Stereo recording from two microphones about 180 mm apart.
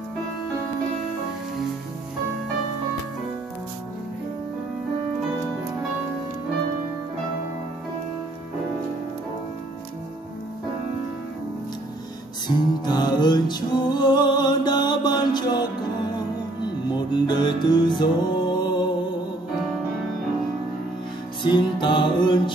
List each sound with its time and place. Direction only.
12.4 s music: 25° left (ahead or behind)
21.4 s music: 25° left (ahead or behind)